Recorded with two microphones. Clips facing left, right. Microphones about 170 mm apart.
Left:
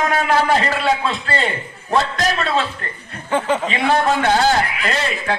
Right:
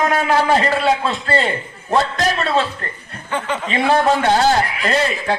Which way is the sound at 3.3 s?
40° left (ahead or behind).